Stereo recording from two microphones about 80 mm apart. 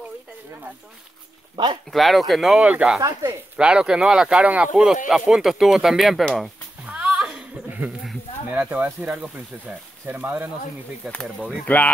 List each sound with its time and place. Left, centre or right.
1.9 s speech: centre
2.6 s speech: centre
6.9 s music: centre
7.3 s chuckle: centre
8.6 s speech: right
11.0 s speech: centre
11.6 s speech: centre